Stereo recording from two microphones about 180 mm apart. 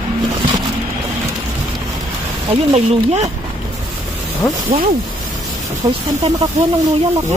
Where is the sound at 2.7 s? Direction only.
40° right (ahead or behind).